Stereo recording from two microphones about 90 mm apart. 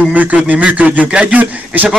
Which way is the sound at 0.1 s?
15° right (ahead or behind).